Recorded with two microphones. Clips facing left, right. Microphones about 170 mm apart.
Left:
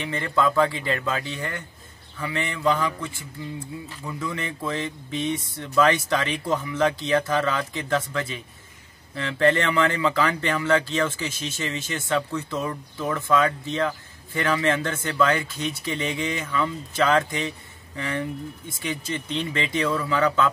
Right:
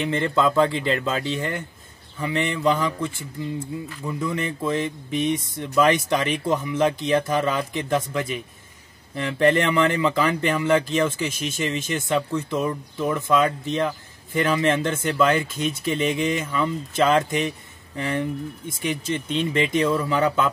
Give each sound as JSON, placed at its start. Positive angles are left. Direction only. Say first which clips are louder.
{"t": 0.1, "sound": "speech", "louder": "right 1 dB", "side_deg": -25}